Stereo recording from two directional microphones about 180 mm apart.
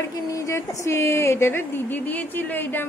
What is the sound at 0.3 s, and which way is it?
Speech, 15° left (ahead or behind).